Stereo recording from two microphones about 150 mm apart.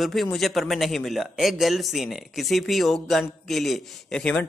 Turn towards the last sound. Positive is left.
turn(degrees=5)  # may be behind; listen again after turning